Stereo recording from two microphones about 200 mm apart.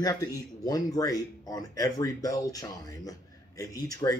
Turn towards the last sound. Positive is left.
turn(degrees=15)  # may be behind; listen again after turning